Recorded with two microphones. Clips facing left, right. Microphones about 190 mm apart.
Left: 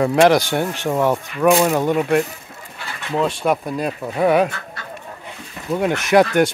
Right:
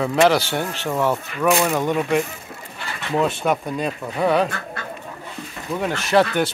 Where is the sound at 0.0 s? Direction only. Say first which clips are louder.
Left 3 dB; 10° left (ahead or behind).